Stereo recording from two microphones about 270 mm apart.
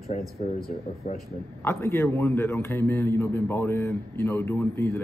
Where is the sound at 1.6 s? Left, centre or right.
Centre.